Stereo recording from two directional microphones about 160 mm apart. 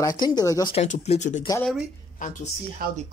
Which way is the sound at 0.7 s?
45° left (ahead or behind).